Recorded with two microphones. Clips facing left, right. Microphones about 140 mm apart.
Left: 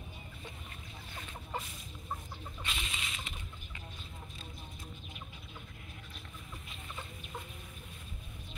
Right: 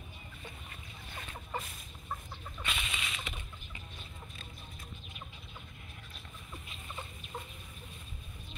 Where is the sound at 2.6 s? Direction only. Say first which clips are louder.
Right 3 dB; 70° right (ahead or behind).